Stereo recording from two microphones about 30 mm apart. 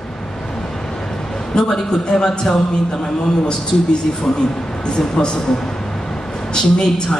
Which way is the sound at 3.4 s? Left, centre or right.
Left.